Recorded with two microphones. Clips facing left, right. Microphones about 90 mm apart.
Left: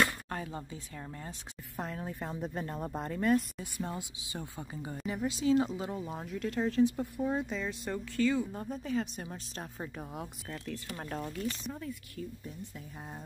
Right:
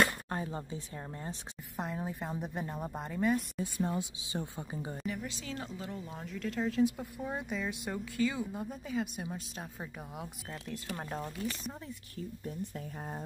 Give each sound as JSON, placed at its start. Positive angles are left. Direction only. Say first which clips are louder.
{"t": 0.0, "sound": "a sound", "louder": "right 1 dB", "side_deg": -25}
{"t": 1.1, "sound": "speech", "louder": "right 2 dB", "side_deg": -25}
{"t": 1.8, "sound": "speech", "louder": "right 1 dB", "side_deg": -10}
{"t": 3.5, "sound": "speech", "louder": "right 5 dB", "side_deg": -25}
{"t": 5.0, "sound": "speech", "louder": "left 8 dB", "side_deg": 20}
{"t": 6.2, "sound": "speech", "louder": "left 1 dB", "side_deg": 5}
{"t": 12.4, "sound": "speech", "louder": "right 5 dB", "side_deg": -45}